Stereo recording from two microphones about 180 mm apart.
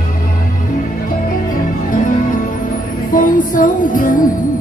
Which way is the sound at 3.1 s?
50° left (ahead or behind).